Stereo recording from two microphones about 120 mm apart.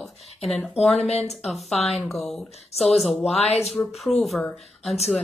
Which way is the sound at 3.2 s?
60° left (ahead or behind).